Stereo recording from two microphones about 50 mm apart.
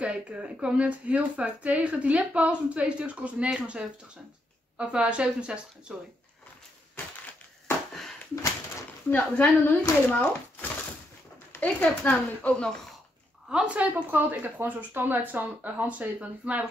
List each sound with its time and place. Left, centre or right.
0.0 s speech: right
9.1 s speech: left
11.6 s speech: left
13.5 s speech: right
14.1 s speech: right